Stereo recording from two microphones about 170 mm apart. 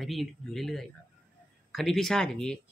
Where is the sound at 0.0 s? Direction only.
Centre (ahead or behind).